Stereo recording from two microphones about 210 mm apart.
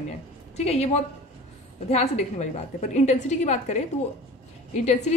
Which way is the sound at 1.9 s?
30° left (ahead or behind).